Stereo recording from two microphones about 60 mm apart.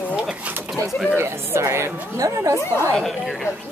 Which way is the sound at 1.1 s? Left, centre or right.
Right.